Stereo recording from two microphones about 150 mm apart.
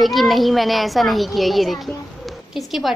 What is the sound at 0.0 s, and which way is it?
A child's voice, centre (ahead or behind).